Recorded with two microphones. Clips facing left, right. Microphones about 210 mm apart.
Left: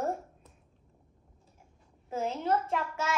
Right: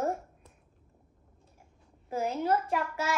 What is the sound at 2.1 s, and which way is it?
Speech, 10° right (ahead or behind).